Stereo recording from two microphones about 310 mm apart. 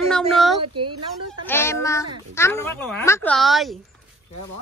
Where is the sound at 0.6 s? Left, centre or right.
Right.